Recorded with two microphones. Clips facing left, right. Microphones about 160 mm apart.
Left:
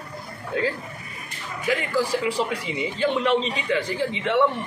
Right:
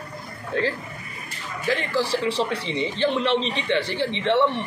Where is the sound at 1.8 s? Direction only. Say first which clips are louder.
Left 1 dB; 10° left (ahead or behind).